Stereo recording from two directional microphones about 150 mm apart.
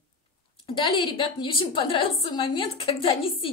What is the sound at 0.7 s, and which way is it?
A woman's voice, 30° left (ahead or behind).